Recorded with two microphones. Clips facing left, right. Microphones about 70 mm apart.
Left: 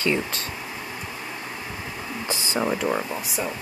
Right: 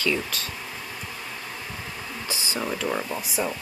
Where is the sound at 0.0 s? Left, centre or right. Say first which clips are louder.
Left 2 dB; left.